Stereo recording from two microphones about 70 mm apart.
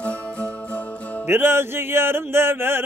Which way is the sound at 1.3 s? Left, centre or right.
Right.